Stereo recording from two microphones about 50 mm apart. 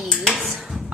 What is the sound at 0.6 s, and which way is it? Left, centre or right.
Music, centre.